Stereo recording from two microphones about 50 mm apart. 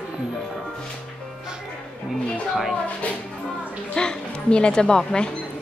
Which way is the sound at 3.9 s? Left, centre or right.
Centre.